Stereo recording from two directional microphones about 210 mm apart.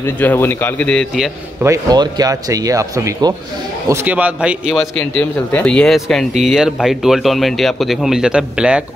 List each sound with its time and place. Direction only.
0.2 s a man's voice: 10° left (ahead or behind)
1.6 s a man's voice: 15° right (ahead or behind)